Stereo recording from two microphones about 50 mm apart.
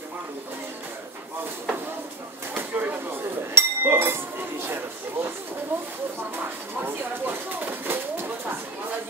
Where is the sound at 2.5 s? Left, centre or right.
Right.